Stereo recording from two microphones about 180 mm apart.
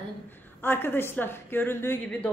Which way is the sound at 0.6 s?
10° left (ahead or behind).